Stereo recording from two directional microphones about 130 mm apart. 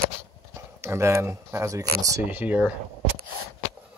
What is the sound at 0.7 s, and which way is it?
Speech, 20° right (ahead or behind).